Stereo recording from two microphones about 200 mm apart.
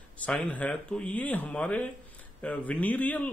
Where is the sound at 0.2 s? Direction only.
5° left (ahead or behind).